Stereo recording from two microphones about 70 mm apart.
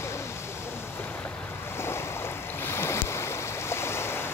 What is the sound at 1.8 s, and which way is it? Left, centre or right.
Boat, left.